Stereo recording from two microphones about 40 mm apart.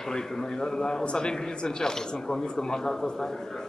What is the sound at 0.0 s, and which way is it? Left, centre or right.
Speech, centre.